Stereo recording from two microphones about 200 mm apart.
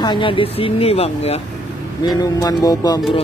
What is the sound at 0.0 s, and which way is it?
Speech, 25° left (ahead or behind).